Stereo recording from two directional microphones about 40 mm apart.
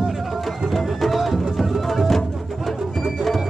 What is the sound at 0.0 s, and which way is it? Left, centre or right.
Music, centre.